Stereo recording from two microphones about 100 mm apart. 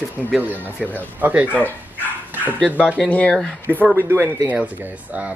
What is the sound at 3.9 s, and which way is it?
Speech, 25° right (ahead or behind).